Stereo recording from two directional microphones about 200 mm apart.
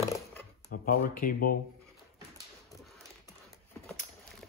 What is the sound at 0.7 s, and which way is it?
Speech, 45° left (ahead or behind).